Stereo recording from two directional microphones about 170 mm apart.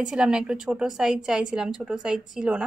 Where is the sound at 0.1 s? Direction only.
5° right (ahead or behind).